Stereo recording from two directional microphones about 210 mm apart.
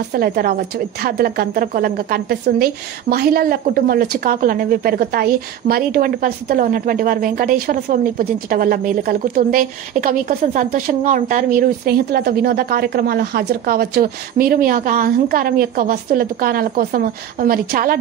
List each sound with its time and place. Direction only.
0.1 s a woman's voice: 45° right (ahead or behind)